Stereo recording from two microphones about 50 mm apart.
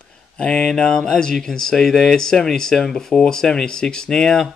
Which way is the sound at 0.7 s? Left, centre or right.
Centre.